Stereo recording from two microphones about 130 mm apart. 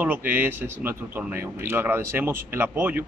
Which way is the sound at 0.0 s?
15° right (ahead or behind).